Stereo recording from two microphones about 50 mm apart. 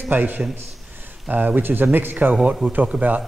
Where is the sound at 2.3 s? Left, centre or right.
Right.